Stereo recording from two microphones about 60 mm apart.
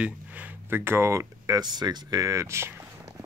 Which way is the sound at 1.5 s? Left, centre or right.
Right.